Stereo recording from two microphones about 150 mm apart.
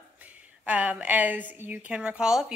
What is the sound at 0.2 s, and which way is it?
A woman's voice, 10° right (ahead or behind).